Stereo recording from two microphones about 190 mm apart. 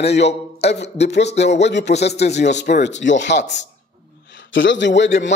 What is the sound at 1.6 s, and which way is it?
Speech, 65° left (ahead or behind).